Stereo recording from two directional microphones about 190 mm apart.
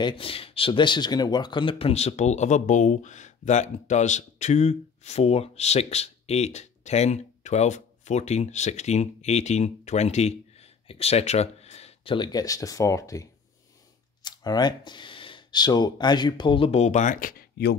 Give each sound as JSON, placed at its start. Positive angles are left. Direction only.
{"t": 0.0, "sound": "speech", "side_deg": 30}